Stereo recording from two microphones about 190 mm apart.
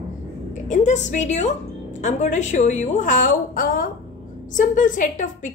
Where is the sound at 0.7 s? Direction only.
40° left (ahead or behind).